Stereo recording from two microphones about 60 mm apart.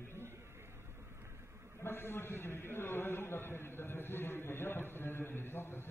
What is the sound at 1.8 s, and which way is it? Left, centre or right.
A man's voice, left.